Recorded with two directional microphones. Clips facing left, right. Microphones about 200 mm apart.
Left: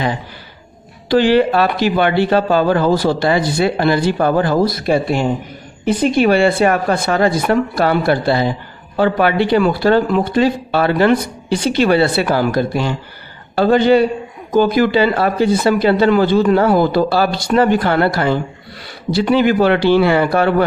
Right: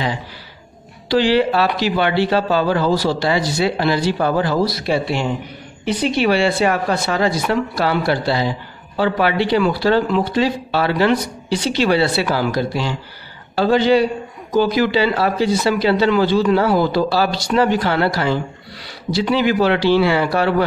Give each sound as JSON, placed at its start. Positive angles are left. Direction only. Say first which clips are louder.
{"t": 1.0, "sound": "speech", "louder": "left 3 dB", "side_deg": 50}